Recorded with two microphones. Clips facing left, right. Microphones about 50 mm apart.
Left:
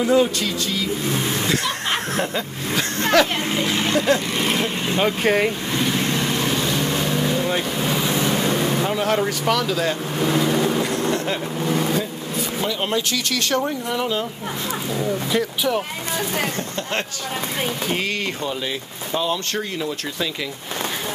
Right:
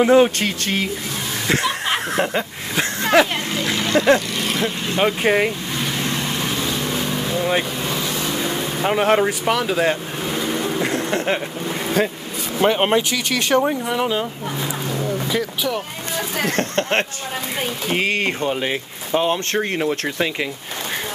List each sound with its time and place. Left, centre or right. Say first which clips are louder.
0.0 s speech: right 4 dB; right
2.1 s speech: right 3 dB; right
3.5 s speech: right 2 dB; centre
4.9 s speech: right 1 dB; centre
5.8 s vehicle: left 3 dB; centre
7.8 s speech: left 2 dB; centre
8.8 s speech: right 4 dB; right
9.2 s speech: right 1 dB; centre
10.8 s vehicle: even; right
12.6 s speech: right 8 dB; right
13.1 s speech: right 3 dB; centre
14.9 s speech: left 1 dB; centre
16.4 s speech: right 6 dB; right
17.9 s speech: right 4 dB; right